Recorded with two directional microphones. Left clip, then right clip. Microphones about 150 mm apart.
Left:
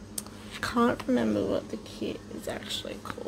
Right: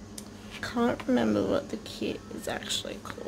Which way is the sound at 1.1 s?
5° right (ahead or behind).